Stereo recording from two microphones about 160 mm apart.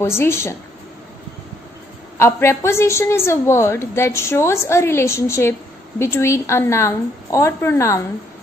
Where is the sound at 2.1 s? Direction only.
15° left (ahead or behind).